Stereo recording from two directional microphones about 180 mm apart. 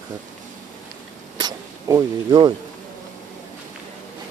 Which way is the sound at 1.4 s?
20° right (ahead or behind).